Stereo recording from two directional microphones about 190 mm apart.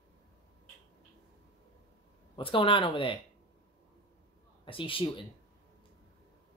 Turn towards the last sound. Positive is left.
turn(degrees=25)  # may be behind; listen again after turning